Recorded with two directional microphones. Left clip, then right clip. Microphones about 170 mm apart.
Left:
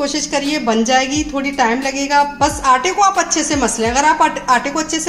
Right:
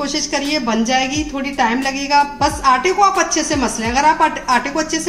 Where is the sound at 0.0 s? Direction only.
25° left (ahead or behind).